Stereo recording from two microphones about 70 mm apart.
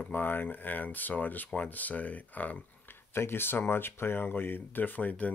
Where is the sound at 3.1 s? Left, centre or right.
Left.